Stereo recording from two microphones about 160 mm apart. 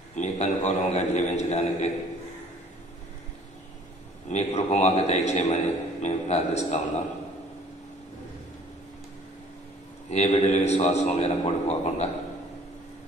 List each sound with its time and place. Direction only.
0.1 s a man's voice: 45° left (ahead or behind)
4.3 s a man's voice: 45° left (ahead or behind)
10.0 s a man's voice: 45° left (ahead or behind)